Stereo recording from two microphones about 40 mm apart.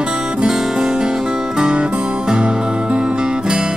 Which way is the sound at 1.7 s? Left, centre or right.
Right.